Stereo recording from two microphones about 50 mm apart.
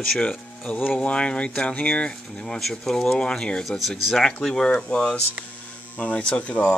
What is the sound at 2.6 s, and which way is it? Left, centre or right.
Speech, centre.